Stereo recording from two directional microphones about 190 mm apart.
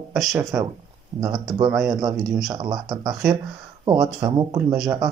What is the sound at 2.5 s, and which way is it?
Speech, 20° right (ahead or behind).